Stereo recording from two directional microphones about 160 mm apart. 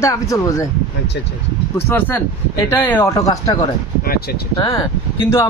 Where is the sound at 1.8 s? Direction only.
15° left (ahead or behind).